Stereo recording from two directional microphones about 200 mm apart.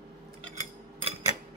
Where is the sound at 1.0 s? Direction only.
30° right (ahead or behind).